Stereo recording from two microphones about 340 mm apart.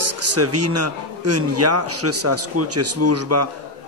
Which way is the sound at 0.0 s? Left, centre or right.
Right.